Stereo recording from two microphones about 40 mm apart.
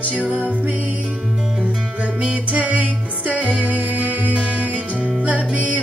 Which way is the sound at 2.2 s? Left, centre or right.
Right.